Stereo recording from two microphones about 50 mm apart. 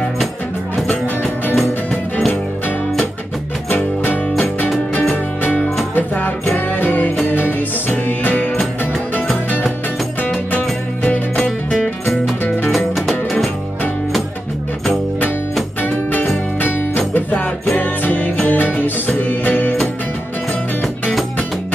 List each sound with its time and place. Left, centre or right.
1.5 s music: centre
3.6 s music: left
10.5 s music: left
11.3 s music: centre
12.6 s music: centre
15.8 s music: left